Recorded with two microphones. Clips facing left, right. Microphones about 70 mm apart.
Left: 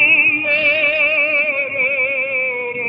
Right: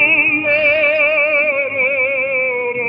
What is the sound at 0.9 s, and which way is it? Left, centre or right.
Music, centre.